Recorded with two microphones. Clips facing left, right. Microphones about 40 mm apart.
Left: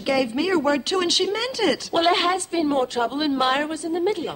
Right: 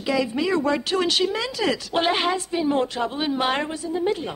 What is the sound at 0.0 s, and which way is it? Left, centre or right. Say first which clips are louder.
Speech: left 1 dB; centre.